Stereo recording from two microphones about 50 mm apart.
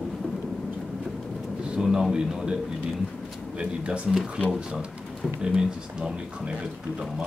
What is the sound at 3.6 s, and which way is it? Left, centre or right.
Speech, right.